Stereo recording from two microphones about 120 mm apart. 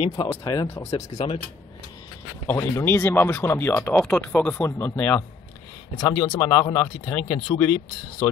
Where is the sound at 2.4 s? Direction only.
25° left (ahead or behind).